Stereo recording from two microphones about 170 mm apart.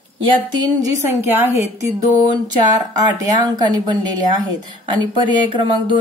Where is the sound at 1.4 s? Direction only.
15° right (ahead or behind).